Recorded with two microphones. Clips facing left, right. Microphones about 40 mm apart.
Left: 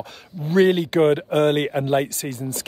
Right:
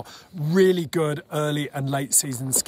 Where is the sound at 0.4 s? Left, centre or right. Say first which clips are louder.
Left 2 dB; left.